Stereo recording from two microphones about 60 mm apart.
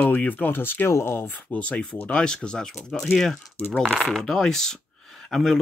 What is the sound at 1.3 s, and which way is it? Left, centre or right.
Speech, left.